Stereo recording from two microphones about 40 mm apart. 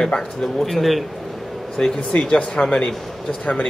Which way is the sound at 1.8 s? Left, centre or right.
Centre.